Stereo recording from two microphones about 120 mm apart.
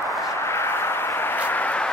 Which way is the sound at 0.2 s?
20° left (ahead or behind).